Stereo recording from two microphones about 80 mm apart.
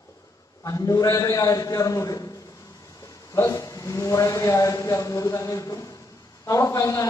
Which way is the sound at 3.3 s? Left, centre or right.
Left.